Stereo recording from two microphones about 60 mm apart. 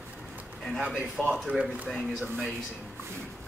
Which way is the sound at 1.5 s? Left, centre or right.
Right.